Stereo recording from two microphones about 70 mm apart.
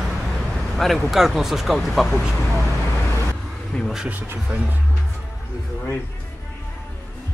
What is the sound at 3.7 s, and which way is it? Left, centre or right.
Speech, centre.